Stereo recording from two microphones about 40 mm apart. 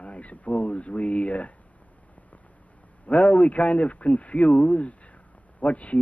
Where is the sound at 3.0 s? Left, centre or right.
Left.